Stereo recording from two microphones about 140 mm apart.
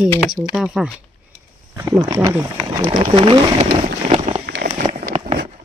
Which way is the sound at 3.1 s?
45° right (ahead or behind).